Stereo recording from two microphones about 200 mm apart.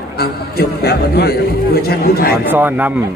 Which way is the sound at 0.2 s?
50° left (ahead or behind).